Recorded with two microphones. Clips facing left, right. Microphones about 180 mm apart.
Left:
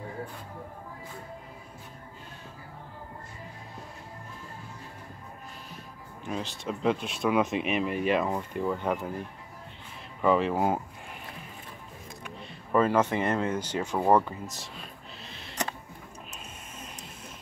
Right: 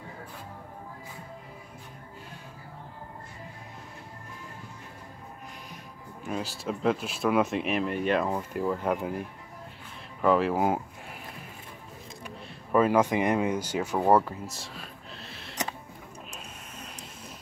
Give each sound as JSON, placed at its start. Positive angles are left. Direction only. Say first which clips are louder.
{"t": 6.2, "sound": "speech", "louder": "right 1 dB", "side_deg": -5}
{"t": 10.2, "sound": "speech", "louder": "right 1 dB", "side_deg": 0}
{"t": 12.4, "sound": "speech", "louder": "right 1 dB", "side_deg": -10}